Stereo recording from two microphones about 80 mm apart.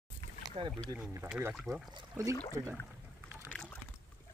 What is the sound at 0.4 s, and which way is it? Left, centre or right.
Rowboat, right.